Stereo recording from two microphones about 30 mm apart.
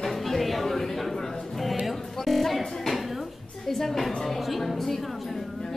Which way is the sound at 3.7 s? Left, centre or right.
Centre.